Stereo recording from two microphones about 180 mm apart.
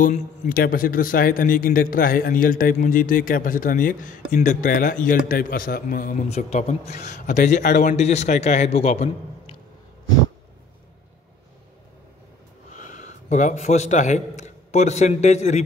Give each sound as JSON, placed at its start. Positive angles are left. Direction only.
{"t": 0.0, "sound": "a man's voice", "side_deg": 45}
{"t": 12.7, "sound": "a man's voice", "side_deg": 40}